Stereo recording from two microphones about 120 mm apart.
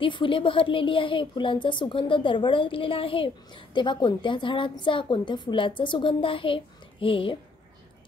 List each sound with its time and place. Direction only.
0.0 s a woman's voice: 45° left (ahead or behind)